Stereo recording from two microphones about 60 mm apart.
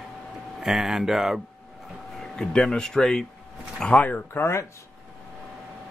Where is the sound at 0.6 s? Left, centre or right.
Centre.